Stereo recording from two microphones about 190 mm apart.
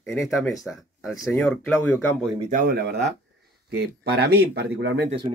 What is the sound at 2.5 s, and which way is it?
Speech, 50° right (ahead or behind).